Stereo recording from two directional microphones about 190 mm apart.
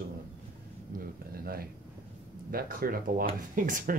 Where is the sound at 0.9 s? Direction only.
50° right (ahead or behind).